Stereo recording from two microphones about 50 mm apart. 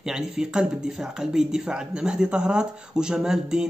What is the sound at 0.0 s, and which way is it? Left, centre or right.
Speech, centre.